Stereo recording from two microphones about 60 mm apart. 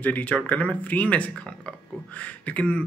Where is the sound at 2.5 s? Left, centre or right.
Left.